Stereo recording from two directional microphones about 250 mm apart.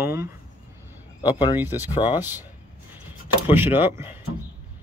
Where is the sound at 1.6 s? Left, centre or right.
Centre.